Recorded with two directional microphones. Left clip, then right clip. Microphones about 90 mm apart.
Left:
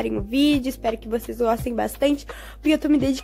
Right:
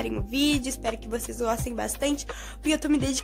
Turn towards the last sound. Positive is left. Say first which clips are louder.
# left 5 dB
turn(degrees=25)  # may be behind; listen again after turning